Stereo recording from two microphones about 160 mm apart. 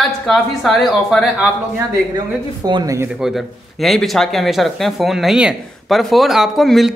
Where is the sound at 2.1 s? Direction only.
25° right (ahead or behind).